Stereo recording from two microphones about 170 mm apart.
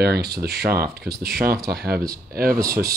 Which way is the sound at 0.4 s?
65° right (ahead or behind).